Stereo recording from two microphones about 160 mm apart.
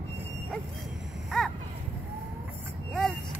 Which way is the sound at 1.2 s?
Centre (ahead or behind).